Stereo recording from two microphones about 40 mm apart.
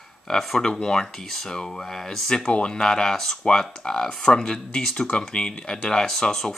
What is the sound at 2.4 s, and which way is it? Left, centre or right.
Speech, left.